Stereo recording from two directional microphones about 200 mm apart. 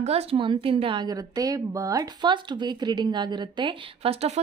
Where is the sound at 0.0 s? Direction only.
30° right (ahead or behind).